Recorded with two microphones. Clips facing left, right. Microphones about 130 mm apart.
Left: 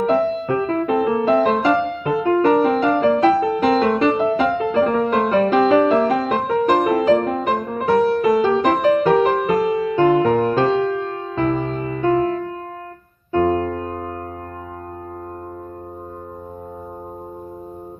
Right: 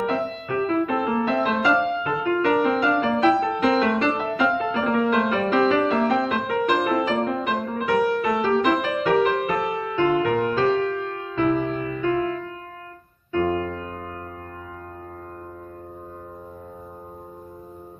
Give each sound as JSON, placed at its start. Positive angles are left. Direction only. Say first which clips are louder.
{"t": 0.5, "sound": "music", "louder": "left 3 dB", "side_deg": 35}
{"t": 3.2, "sound": "music", "louder": "left 3 dB", "side_deg": 35}